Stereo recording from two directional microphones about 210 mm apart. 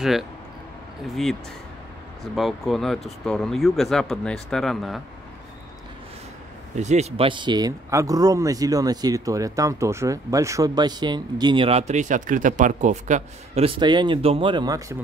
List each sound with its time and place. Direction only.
2.3 s speech: centre (ahead or behind)
6.8 s speech: 30° right (ahead or behind)